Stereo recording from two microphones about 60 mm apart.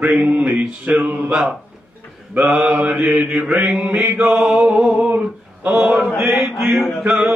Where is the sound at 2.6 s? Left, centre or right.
Centre.